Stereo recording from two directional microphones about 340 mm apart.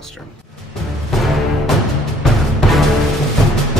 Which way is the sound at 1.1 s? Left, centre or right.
Centre.